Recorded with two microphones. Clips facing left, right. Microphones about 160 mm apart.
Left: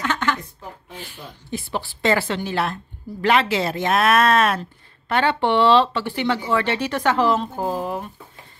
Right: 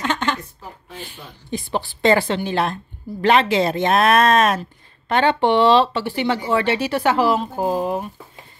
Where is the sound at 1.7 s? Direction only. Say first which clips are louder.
Right 4 dB; 25° right (ahead or behind).